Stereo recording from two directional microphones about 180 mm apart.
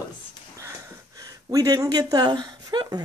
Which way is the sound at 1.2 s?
20° right (ahead or behind).